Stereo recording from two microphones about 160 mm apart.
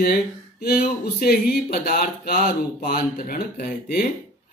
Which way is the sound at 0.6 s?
70° left (ahead or behind).